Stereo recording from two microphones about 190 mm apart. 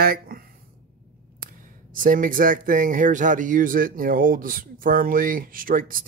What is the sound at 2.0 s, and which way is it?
Speech, 45° right (ahead or behind).